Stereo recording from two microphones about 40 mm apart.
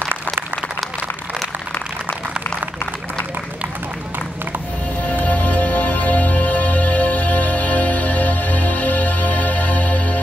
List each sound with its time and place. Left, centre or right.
5.0 s music: left